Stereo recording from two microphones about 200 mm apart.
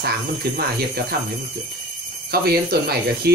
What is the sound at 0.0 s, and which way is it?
Speech, 50° right (ahead or behind).